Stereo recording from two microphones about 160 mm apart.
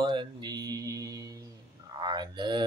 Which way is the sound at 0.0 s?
30° right (ahead or behind).